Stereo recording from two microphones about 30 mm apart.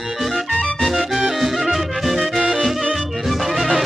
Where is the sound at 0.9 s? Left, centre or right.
Centre.